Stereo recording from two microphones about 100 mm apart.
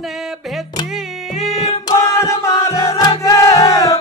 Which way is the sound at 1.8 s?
45° left (ahead or behind).